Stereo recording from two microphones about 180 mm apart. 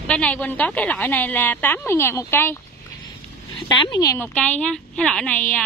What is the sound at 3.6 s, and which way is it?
A woman's voice, 20° left (ahead or behind).